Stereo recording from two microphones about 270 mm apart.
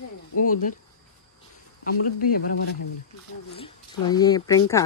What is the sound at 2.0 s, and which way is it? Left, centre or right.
Speech, left.